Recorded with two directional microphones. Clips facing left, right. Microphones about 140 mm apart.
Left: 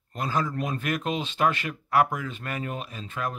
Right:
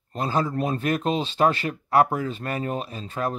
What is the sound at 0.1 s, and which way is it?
Speech, 30° right (ahead or behind).